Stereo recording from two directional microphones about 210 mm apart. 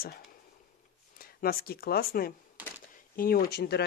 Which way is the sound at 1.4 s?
45° left (ahead or behind).